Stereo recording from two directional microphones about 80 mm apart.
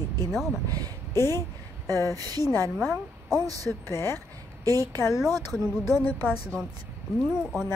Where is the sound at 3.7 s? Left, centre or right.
Left.